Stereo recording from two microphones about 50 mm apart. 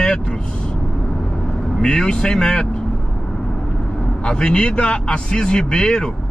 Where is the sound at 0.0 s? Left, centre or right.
Centre.